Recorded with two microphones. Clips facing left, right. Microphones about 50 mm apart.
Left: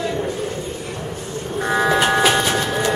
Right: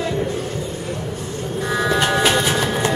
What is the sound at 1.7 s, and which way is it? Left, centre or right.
Train, left.